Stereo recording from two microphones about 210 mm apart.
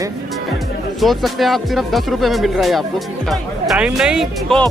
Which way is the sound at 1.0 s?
Centre (ahead or behind).